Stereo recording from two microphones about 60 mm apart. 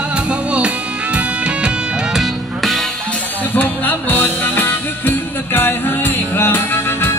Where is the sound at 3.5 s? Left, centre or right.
Left.